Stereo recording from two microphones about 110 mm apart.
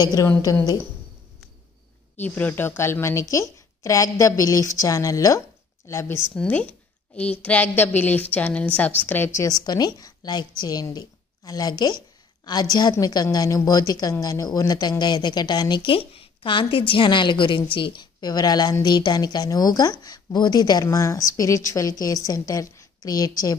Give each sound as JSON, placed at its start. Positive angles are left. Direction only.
{"t": 0.0, "sound": "speech", "side_deg": 35}
{"t": 2.1, "sound": "speech", "side_deg": 15}
{"t": 6.3, "sound": "a woman's voice", "side_deg": 10}
{"t": 9.6, "sound": "speech", "side_deg": 35}